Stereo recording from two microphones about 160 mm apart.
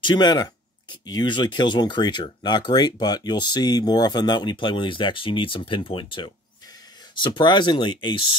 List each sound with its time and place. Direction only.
0.0 s speech: 25° left (ahead or behind)